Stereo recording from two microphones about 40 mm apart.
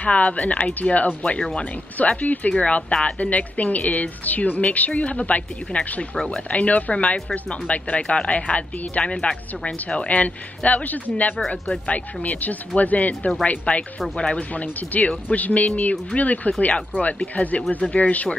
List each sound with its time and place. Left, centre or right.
0.0 s a woman's voice: left
1.6 s a woman's voice: left
2.5 s a woman's voice: left
9.9 s a woman's voice: left
11.3 s speech: centre
11.8 s a woman's voice: left